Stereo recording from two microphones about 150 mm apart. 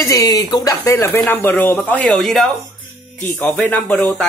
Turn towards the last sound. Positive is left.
turn(degrees=10)  # may be behind; listen again after turning